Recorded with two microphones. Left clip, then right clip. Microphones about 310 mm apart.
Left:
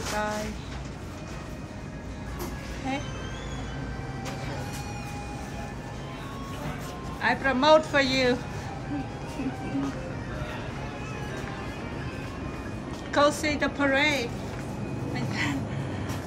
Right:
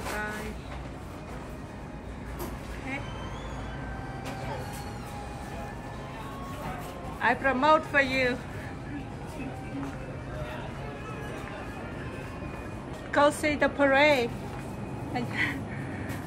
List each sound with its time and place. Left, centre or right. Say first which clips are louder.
7.2 s speech: even; centre
13.1 s speech: even; centre